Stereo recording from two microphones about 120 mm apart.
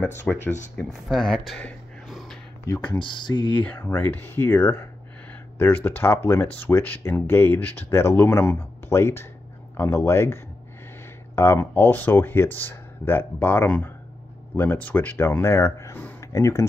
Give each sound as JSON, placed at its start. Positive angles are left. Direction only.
{"t": 0.0, "sound": "speech", "side_deg": 15}
{"t": 1.0, "sound": "speech", "side_deg": 0}
{"t": 2.0, "sound": "a sound", "side_deg": 0}
{"t": 2.6, "sound": "speech", "side_deg": 20}
{"t": 3.0, "sound": "speech", "side_deg": 40}
{"t": 3.5, "sound": "speech", "side_deg": 15}
{"t": 5.9, "sound": "speech", "side_deg": 20}